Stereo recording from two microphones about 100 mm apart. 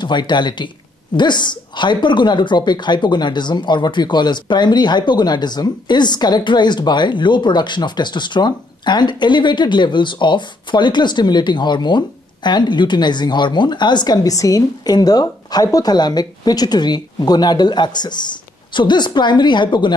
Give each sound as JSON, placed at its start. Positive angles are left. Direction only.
{"t": 0.0, "sound": "a woman's voice", "side_deg": 50}